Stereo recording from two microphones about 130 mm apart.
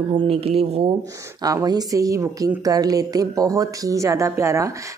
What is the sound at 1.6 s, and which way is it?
A woman's voice, 30° right (ahead or behind).